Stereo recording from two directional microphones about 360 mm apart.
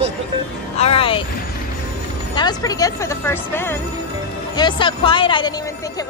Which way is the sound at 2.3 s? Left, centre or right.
Centre.